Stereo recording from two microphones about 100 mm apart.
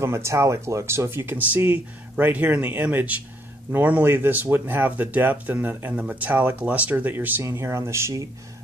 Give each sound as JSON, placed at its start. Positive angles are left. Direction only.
{"t": 0.0, "sound": "speech", "side_deg": -30}